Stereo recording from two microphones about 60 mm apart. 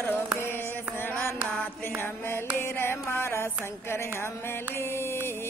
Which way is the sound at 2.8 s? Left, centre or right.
Left.